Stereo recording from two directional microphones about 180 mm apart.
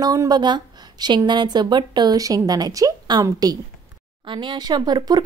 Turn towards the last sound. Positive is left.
turn(degrees=-25)  # may be behind; listen again after turning